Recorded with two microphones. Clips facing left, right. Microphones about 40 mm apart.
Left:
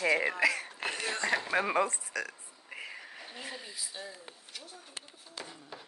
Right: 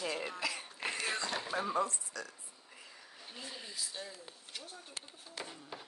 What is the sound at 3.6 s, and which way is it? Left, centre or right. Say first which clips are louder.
Speech: left 1 dB; centre.